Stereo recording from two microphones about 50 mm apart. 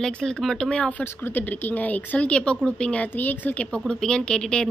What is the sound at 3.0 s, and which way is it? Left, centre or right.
Speech, left.